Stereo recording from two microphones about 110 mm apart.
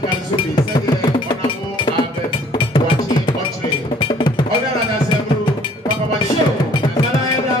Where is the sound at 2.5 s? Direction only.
45° left (ahead or behind).